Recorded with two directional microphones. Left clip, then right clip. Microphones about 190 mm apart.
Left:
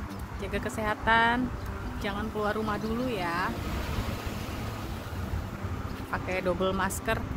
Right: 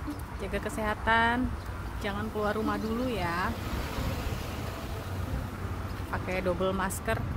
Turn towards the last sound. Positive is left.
turn(degrees=5)  # may be behind; listen again after turning